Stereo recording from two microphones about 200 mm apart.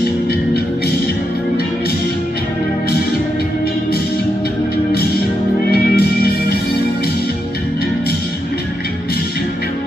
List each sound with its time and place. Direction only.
5.7 s music: 50° left (ahead or behind)